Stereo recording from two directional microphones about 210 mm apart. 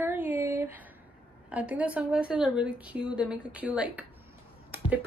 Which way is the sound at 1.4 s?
5° right (ahead or behind).